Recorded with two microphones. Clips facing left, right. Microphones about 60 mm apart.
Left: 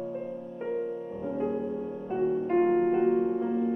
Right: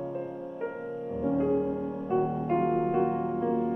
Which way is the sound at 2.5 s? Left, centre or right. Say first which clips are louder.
Left 2 dB; centre.